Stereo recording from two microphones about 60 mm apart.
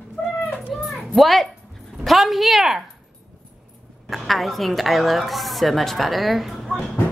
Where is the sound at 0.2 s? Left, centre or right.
Centre.